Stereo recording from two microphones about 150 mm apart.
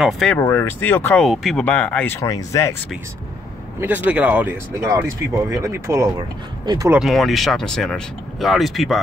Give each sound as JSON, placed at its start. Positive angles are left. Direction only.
{"t": 0.0, "sound": "speech", "side_deg": 5}
{"t": 0.4, "sound": "speech", "side_deg": 15}
{"t": 1.2, "sound": "speech", "side_deg": 0}
{"t": 2.1, "sound": "speech", "side_deg": 20}
{"t": 3.8, "sound": "speech", "side_deg": -10}
{"t": 6.1, "sound": "speech", "side_deg": -30}
{"t": 6.9, "sound": "speech", "side_deg": 0}